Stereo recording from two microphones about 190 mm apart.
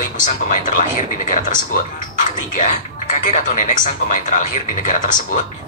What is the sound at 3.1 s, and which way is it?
Speech, 40° left (ahead or behind).